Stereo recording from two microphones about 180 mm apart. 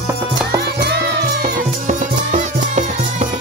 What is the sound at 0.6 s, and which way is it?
Music, 60° right (ahead or behind).